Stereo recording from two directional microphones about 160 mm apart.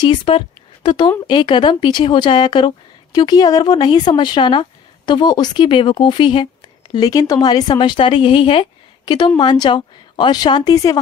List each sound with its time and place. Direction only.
0.0 s speech: 30° left (ahead or behind)